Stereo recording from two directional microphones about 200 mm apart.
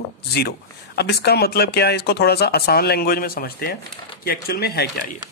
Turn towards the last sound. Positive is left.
turn(degrees=50)  # may be behind; listen again after turning